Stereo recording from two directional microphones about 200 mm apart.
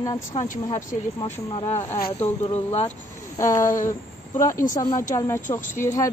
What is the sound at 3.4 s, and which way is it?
Speech, 15° left (ahead or behind).